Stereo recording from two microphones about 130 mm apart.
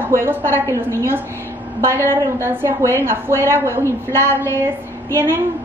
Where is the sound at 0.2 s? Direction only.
20° right (ahead or behind).